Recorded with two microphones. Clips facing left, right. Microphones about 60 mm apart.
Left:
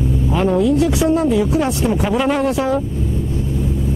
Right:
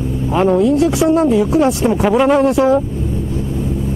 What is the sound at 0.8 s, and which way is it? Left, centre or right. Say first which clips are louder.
Speech: right 3 dB; right.